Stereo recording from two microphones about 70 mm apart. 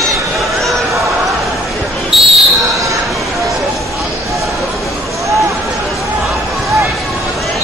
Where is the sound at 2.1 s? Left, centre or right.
Centre.